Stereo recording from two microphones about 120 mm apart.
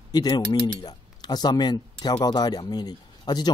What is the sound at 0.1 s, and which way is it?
A man's voice, 35° left (ahead or behind).